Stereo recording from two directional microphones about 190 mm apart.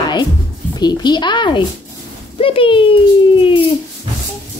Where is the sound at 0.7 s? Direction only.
20° left (ahead or behind).